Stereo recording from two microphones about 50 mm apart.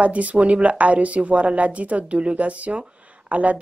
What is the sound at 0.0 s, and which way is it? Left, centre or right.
Speech, right.